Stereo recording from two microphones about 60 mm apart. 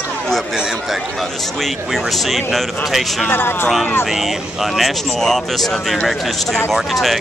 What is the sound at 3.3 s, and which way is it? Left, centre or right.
Speech, left.